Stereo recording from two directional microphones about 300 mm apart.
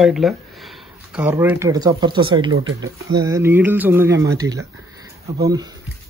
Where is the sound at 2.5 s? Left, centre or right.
Right.